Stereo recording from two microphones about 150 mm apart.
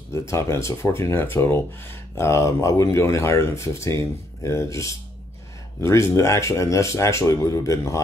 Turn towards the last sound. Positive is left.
turn(degrees=20)  # may be behind; listen again after turning